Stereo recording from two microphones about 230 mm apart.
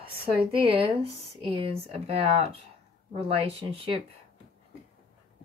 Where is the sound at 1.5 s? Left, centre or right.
Right.